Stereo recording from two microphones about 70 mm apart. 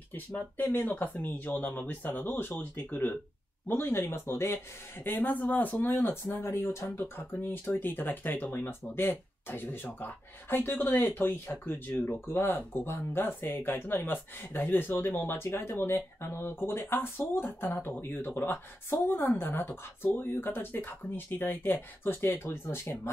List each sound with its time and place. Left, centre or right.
0.3 s speech: left
5.0 s speech: left
6.5 s speech: left